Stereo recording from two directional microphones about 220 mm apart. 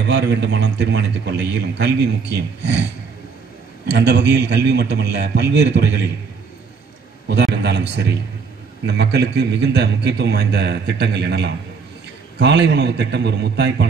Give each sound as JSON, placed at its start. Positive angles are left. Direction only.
{"t": 0.0, "sound": "a man's voice", "side_deg": -50}
{"t": 7.2, "sound": "a man's voice", "side_deg": -50}